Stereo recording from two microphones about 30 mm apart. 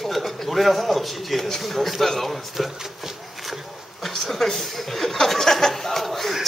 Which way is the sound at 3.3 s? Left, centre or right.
Centre.